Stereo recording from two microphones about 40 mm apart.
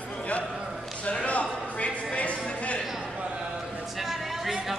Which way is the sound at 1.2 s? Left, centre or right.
Left.